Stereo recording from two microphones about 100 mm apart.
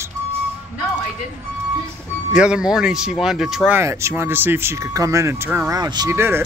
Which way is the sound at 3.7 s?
25° right (ahead or behind).